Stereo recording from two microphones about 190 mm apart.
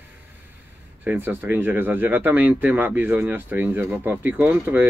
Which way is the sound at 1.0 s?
10° right (ahead or behind).